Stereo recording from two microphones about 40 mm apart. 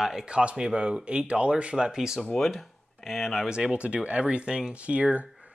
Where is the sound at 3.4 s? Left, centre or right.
Right.